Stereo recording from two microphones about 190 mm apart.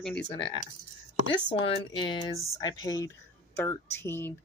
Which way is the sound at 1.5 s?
25° left (ahead or behind).